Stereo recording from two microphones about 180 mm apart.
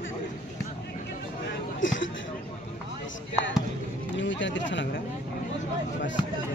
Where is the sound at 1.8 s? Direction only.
90° left.